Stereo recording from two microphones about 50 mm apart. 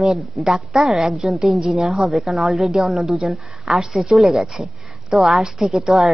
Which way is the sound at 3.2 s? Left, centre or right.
Right.